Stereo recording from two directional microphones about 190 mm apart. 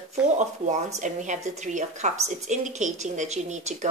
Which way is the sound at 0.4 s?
40° right (ahead or behind).